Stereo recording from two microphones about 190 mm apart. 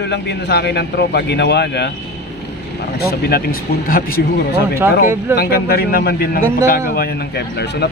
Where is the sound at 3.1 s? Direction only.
55° left (ahead or behind).